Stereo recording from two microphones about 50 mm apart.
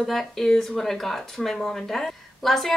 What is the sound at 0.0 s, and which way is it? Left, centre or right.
A woman's voice, centre.